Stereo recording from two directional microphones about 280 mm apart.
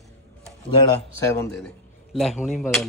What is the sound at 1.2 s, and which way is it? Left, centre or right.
Speech, centre.